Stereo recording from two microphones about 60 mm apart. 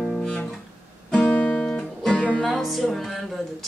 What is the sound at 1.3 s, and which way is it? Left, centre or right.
Guitar, left.